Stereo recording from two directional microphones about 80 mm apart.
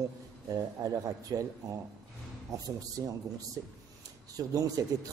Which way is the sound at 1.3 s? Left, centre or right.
Right.